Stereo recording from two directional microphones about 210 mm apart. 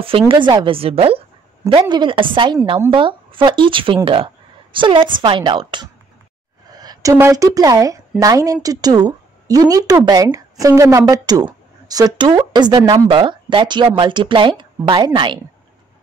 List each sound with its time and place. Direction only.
0.3 s a woman's voice: 20° right (ahead or behind)